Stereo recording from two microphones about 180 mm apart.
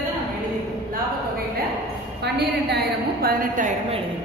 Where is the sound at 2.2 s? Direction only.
65° right (ahead or behind); by 3.7 s 50° right (ahead or behind).